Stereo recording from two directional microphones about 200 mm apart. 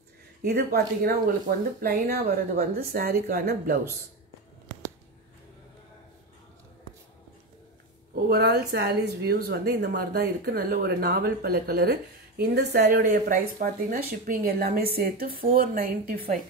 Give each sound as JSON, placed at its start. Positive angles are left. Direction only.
{"t": 0.4, "sound": "speech", "side_deg": -55}
{"t": 8.1, "sound": "speech", "side_deg": -50}